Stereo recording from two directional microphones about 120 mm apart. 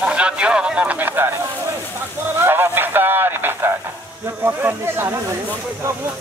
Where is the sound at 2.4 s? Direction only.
20° right (ahead or behind).